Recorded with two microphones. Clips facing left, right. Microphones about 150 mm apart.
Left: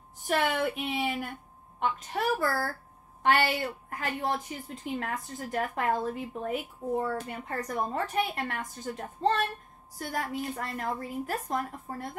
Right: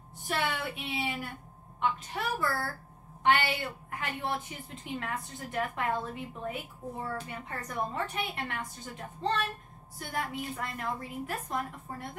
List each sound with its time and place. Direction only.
0.3 s a woman's voice: 45° left (ahead or behind)